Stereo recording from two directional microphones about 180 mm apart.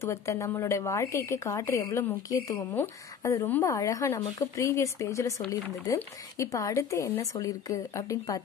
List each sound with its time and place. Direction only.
0.0 s speech: 15° left (ahead or behind)